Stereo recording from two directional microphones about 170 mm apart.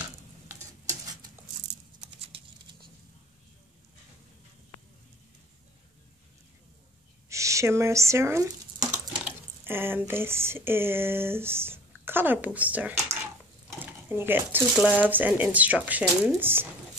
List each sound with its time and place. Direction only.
2.1 s typing: 35° right (ahead or behind)
7.2 s a sound: 20° right (ahead or behind)
9.2 s speech: 10° right (ahead or behind)